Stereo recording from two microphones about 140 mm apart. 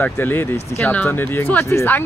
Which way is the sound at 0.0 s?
15° left (ahead or behind).